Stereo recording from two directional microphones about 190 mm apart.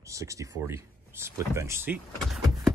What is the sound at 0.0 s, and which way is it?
Speech, 15° right (ahead or behind).